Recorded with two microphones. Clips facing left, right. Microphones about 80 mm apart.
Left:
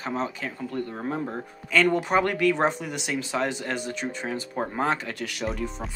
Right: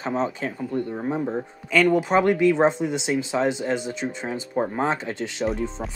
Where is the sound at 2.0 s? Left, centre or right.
Centre.